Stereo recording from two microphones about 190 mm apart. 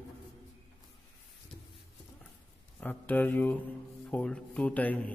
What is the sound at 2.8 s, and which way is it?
A man's voice, 10° left (ahead or behind).